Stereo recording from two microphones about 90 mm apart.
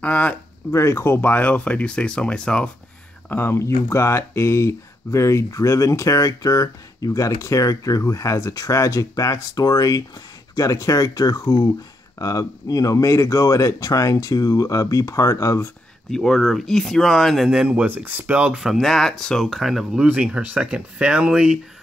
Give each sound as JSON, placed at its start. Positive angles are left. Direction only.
{"t": 0.0, "sound": "speech", "side_deg": 15}
{"t": 0.7, "sound": "speech", "side_deg": 30}
{"t": 3.3, "sound": "speech", "side_deg": 25}
{"t": 16.1, "sound": "speech", "side_deg": 5}
{"t": 17.5, "sound": "speech", "side_deg": -10}